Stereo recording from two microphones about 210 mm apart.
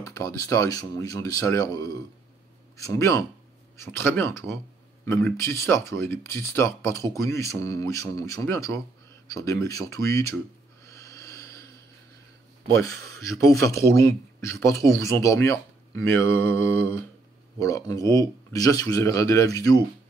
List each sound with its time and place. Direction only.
0.0 s speech: 15° left (ahead or behind)
10.9 s a sound: 15° left (ahead or behind)
13.2 s speech: 15° left (ahead or behind)